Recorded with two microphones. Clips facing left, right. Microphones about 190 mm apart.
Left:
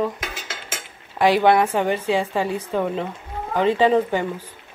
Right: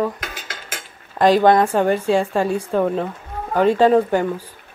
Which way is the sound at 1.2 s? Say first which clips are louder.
Right 3 dB; 10° left (ahead or behind).